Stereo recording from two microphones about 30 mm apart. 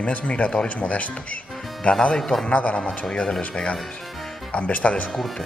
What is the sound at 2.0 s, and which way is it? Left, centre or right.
Speech, left.